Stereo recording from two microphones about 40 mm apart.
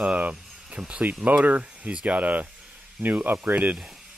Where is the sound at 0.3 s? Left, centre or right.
Right.